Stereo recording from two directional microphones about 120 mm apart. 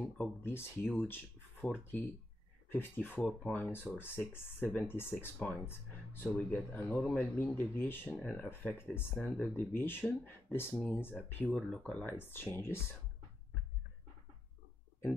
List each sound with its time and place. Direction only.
0.5 s speech: 15° left (ahead or behind)
8.2 s speech: 5° left (ahead or behind)
8.5 s speech: 20° left (ahead or behind)